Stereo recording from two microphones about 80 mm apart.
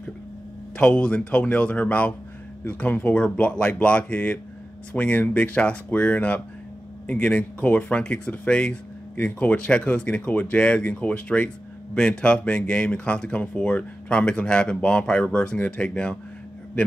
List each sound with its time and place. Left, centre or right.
0.7 s speech: centre